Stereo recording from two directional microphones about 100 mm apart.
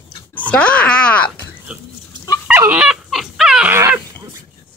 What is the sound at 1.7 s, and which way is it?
Goat, 15° right (ahead or behind).